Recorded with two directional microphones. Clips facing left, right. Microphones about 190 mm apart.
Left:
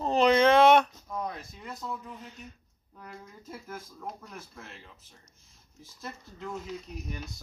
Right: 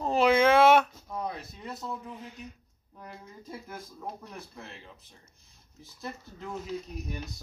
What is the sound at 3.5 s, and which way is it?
Speech, 15° right (ahead or behind).